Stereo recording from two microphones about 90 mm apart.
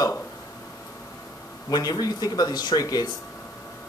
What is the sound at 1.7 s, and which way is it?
Speech, 45° left (ahead or behind).